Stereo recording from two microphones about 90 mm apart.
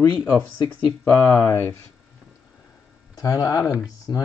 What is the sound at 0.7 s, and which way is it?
Speech, 20° left (ahead or behind).